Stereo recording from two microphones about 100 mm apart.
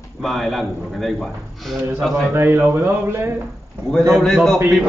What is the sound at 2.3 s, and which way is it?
Speech, 25° right (ahead or behind).